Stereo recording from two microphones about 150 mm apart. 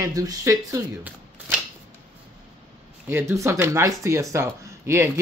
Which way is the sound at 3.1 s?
15° right (ahead or behind).